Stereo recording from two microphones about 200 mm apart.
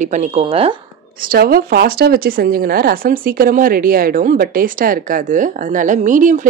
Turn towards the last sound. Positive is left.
turn(degrees=-40)  # may be behind; listen again after turning